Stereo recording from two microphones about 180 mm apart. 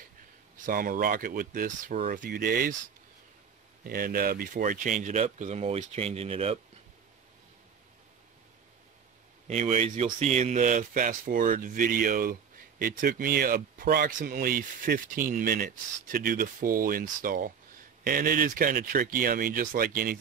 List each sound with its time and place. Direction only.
0.7 s speech: 50° right (ahead or behind); by 6.6 s 35° right (ahead or behind)
9.5 s speech: 40° right (ahead or behind)